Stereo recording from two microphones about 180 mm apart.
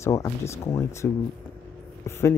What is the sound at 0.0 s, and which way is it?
Speech, 15° left (ahead or behind).